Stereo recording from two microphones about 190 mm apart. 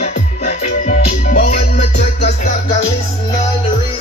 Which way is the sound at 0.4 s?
40° left (ahead or behind).